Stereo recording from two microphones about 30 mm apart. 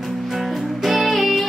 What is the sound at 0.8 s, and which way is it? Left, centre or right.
Music, centre.